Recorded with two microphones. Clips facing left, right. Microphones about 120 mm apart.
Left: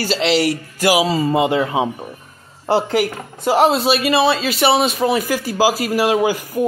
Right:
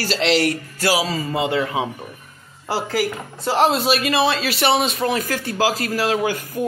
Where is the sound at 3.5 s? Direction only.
5° left (ahead or behind).